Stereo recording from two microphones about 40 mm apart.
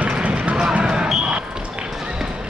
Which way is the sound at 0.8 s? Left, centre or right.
Right.